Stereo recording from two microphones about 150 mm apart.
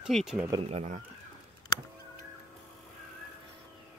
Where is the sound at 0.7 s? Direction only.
50° right (ahead or behind).